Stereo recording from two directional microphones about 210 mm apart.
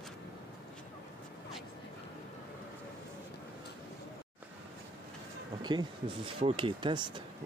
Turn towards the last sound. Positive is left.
turn(degrees=-20)  # may be behind; listen again after turning